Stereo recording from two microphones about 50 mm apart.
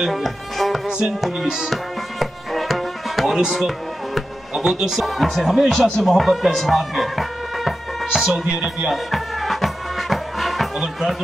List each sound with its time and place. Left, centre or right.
0.0 s speech: centre
0.8 s music: centre
1.2 s music: centre
3.5 s speech: centre
8.8 s music: centre